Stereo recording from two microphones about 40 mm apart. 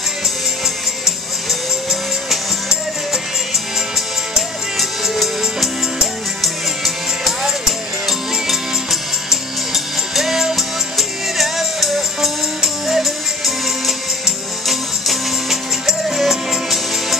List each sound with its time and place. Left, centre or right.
1.0 s music: centre
4.7 s music: centre
6.4 s music: centre
10.1 s music: centre